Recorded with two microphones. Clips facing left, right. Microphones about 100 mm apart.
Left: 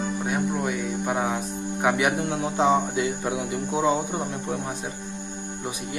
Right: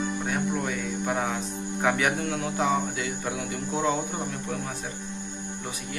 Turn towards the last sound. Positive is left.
turn(degrees=20)  # may be behind; listen again after turning